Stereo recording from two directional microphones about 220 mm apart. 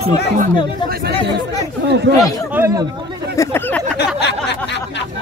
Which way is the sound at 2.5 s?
10° right (ahead or behind).